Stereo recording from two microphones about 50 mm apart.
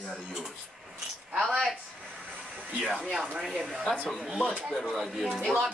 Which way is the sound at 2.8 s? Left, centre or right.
Centre.